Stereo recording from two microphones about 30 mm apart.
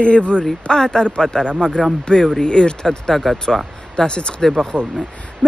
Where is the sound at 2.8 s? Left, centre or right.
Centre.